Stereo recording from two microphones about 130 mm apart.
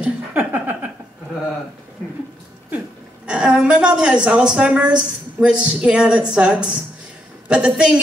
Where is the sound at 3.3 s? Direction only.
10° right (ahead or behind).